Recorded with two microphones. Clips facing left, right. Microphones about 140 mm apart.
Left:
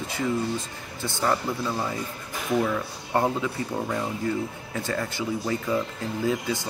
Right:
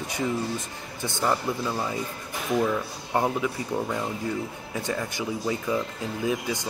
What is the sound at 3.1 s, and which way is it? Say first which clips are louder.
Speech: left 1 dB; 10° right (ahead or behind).